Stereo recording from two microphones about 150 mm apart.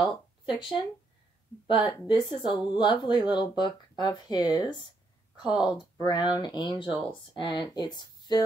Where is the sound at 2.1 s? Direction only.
35° left (ahead or behind).